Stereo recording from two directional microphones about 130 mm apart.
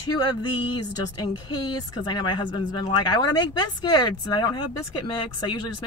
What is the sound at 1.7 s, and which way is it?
Speech, 35° left (ahead or behind).